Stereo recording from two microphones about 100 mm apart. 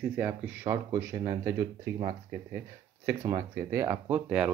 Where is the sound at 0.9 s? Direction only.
30° right (ahead or behind).